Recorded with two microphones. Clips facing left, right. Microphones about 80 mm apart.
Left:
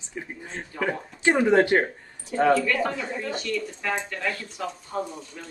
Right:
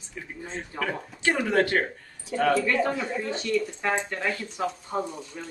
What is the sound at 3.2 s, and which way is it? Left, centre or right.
Speech, right.